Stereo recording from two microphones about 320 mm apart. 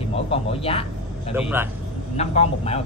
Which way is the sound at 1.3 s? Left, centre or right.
Centre.